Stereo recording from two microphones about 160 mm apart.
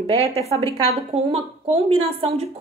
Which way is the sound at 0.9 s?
40° right (ahead or behind).